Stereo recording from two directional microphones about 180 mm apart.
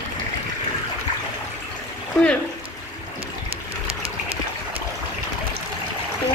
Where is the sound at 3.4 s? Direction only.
30° right (ahead or behind).